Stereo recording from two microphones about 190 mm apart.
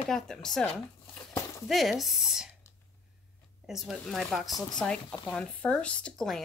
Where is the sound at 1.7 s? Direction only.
Centre (ahead or behind).